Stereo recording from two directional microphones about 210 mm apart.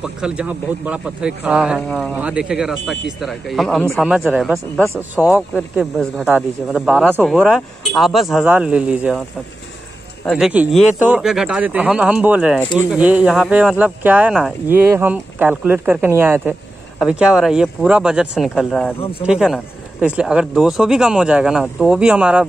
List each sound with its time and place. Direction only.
0.0 s speech: 5° right (ahead or behind)
10.2 s speech: centre (ahead or behind)